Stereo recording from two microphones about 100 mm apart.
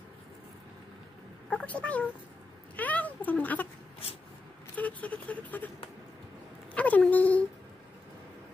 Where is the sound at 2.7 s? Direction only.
15° left (ahead or behind).